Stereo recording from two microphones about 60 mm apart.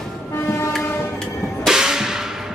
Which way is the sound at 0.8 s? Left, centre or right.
Left.